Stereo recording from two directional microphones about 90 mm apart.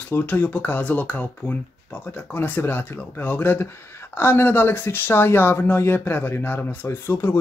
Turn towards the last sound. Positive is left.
turn(degrees=25)  # may be behind; listen again after turning